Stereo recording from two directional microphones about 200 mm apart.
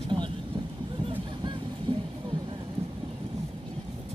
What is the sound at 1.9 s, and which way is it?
Music, 25° right (ahead or behind).